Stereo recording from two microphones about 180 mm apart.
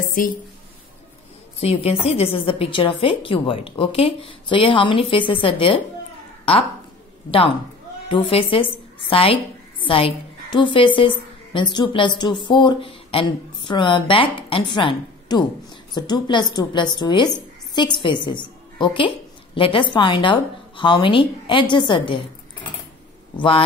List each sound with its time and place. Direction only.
0.2 s speech: 50° left (ahead or behind)
1.6 s a woman's voice: 35° left (ahead or behind)
7.2 s a man's voice: 30° left (ahead or behind)